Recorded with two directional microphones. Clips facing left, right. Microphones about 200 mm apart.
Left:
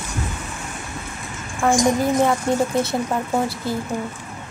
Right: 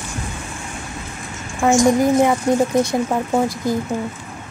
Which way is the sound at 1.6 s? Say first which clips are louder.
Right 4 dB; 15° right (ahead or behind).